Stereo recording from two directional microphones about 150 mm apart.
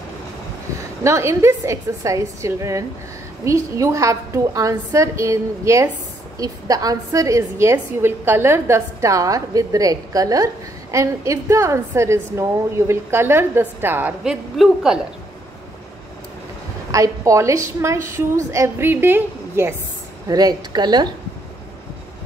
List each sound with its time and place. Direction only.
1.0 s a woman's voice: 20° right (ahead or behind); by 15.0 s 5° right (ahead or behind)
16.9 s a woman's voice: 20° right (ahead or behind)